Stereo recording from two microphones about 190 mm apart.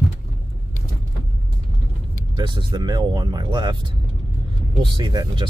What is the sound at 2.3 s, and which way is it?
Speech, 25° right (ahead or behind).